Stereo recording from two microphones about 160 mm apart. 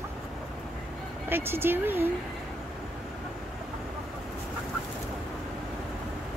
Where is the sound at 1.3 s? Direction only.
15° right (ahead or behind).